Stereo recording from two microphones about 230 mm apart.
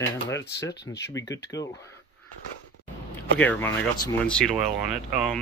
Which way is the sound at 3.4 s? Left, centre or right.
Centre.